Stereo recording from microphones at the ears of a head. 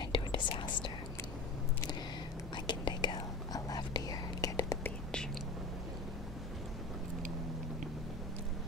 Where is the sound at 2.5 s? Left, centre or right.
Left.